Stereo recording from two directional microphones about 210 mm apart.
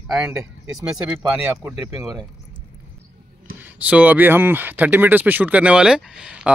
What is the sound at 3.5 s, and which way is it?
Speech, 10° right (ahead or behind).